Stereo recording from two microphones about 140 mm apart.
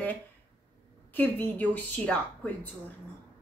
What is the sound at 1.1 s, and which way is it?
A woman's voice, 10° left (ahead or behind).